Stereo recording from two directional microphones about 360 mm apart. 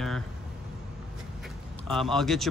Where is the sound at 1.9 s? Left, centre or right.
Centre.